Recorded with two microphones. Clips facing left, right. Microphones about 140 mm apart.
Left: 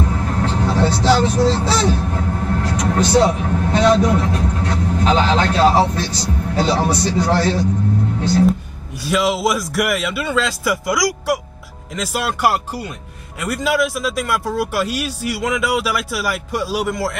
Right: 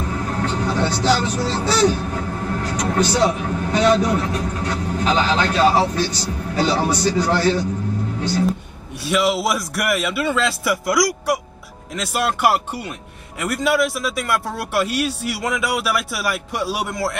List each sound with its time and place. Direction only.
0.1 s vehicle: 30° left (ahead or behind)
3.0 s a man's voice: 30° left (ahead or behind)
9.0 s speech: centre (ahead or behind)